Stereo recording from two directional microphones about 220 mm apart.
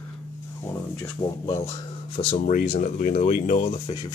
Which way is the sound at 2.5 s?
35° left (ahead or behind).